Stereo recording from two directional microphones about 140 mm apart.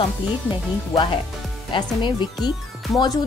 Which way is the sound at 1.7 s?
35° left (ahead or behind).